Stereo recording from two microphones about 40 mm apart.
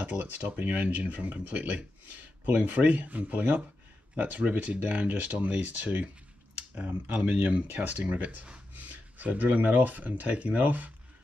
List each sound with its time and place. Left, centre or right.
0.2 s speech: right